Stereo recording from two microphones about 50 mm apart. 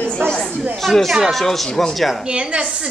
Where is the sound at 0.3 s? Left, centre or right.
Left.